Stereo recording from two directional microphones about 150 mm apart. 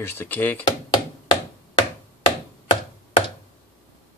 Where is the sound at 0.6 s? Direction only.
30° left (ahead or behind).